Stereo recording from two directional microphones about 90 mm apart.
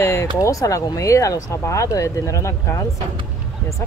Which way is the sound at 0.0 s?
30° left (ahead or behind).